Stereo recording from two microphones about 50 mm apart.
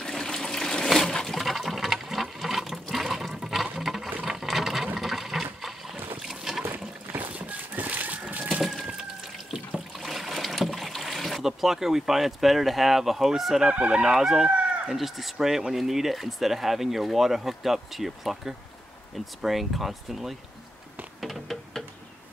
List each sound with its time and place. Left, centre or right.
0.0 s toilet flush: centre
3.7 s a sound: centre
4.3 s sewing machine: centre
4.9 s toilet flush: centre
6.1 s boat: centre
6.7 s a sound: right
9.9 s boat: centre
13.7 s speech: centre
14.1 s speech: centre
21.2 s music: centre